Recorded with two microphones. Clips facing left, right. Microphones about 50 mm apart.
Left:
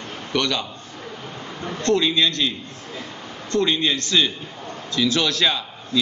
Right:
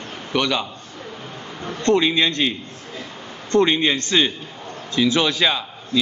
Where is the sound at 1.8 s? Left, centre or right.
Right.